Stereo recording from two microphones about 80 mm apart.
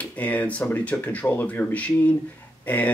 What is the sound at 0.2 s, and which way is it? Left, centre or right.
Speech, centre.